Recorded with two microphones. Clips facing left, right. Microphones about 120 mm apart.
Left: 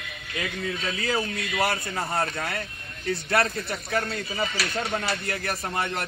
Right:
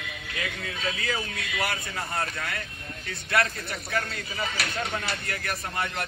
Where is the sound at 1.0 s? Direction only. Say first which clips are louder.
Left 4 dB; 30° left (ahead or behind).